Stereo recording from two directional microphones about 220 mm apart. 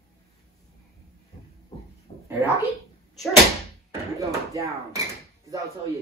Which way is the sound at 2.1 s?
25° left (ahead or behind).